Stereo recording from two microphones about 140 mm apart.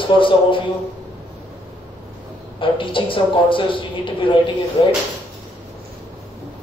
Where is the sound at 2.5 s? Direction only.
35° left (ahead or behind).